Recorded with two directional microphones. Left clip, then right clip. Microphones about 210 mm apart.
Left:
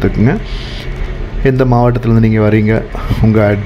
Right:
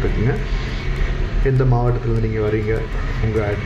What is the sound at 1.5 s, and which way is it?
A man's voice, 45° left (ahead or behind).